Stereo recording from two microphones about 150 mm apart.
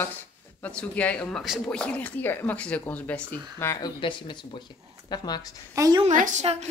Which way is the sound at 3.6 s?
20° left (ahead or behind).